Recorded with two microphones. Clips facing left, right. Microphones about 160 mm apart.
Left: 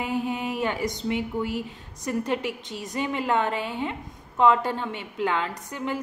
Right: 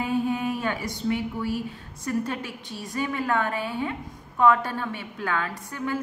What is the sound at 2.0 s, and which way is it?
A woman's voice, 20° left (ahead or behind).